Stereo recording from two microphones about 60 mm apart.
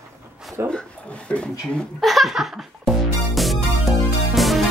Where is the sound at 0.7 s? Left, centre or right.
Centre.